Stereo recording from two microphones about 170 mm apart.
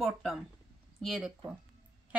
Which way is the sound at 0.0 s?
Centre (ahead or behind).